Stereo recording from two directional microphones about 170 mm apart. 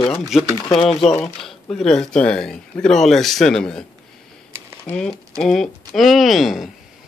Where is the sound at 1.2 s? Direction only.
Centre (ahead or behind).